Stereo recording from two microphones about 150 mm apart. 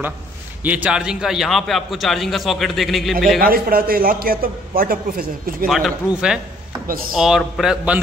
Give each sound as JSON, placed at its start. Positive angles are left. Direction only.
{"t": 0.7, "sound": "a man's voice", "side_deg": -10}
{"t": 3.3, "sound": "a man's voice", "side_deg": -80}
{"t": 5.7, "sound": "a man's voice", "side_deg": 0}